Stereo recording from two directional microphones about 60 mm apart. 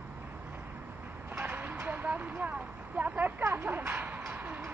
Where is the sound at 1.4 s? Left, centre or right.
Right.